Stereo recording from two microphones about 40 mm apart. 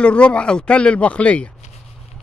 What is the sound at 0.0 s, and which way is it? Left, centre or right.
Speech, left.